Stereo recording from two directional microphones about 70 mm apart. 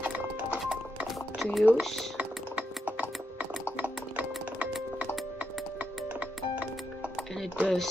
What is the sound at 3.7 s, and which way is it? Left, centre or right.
Music, right.